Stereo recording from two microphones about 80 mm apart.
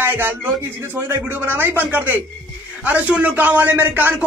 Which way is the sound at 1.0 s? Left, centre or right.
Right.